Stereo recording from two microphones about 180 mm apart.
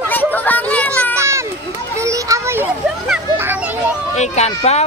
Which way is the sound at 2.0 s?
15° right (ahead or behind).